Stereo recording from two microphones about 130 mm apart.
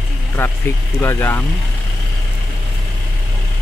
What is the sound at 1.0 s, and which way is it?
Speech, 20° left (ahead or behind).